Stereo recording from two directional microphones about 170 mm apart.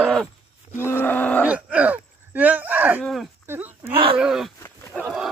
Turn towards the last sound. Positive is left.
turn(degrees=10)  # may be behind; listen again after turning